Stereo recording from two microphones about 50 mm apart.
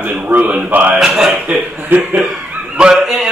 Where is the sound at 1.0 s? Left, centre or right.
Centre.